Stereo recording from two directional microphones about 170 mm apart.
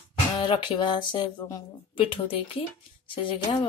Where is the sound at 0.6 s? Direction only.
30° left (ahead or behind).